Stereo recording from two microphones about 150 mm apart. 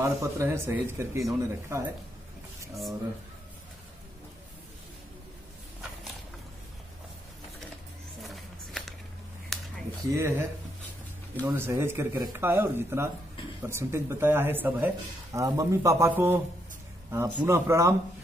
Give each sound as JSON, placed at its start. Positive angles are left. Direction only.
{"t": 0.0, "sound": "speech", "side_deg": -20}
{"t": 8.2, "sound": "a sound", "side_deg": 0}
{"t": 10.0, "sound": "speech", "side_deg": -20}
{"t": 11.4, "sound": "speech", "side_deg": -15}